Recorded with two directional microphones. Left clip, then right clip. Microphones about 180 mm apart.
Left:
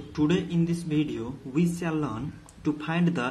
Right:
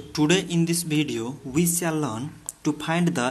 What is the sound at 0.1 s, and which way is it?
Speech, 35° right (ahead or behind).